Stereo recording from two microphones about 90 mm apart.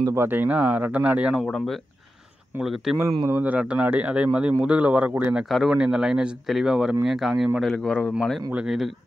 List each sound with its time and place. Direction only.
0.1 s speech: 25° right (ahead or behind)
2.6 s speech: 5° right (ahead or behind)
3.3 s speech: 20° right (ahead or behind)
5.5 s a man's voice: 5° right (ahead or behind)
8.5 s speech: 5° right (ahead or behind)